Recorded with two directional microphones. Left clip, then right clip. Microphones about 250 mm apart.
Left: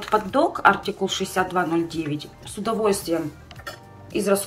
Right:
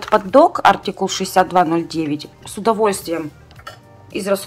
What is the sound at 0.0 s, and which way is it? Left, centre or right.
Speech, centre.